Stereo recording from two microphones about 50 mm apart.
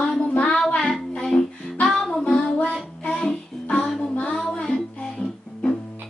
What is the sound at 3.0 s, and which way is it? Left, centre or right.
Child singing, centre.